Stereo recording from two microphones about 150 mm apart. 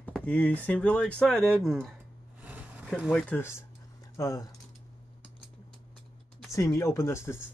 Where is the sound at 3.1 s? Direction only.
15° left (ahead or behind).